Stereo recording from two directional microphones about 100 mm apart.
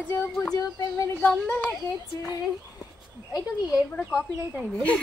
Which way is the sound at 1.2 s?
15° left (ahead or behind).